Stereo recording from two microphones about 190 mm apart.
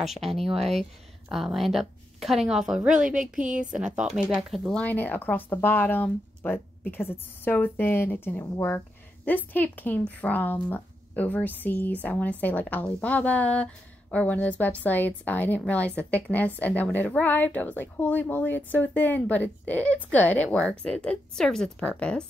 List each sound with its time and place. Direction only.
0.0 s a woman's voice: centre (ahead or behind)